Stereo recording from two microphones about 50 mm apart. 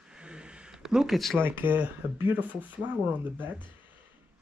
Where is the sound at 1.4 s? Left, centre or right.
Right.